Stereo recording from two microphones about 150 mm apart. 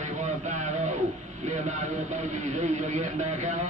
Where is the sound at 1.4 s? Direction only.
50° right (ahead or behind).